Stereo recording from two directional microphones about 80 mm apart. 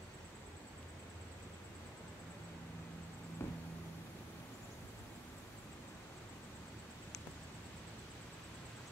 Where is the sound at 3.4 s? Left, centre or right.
Left.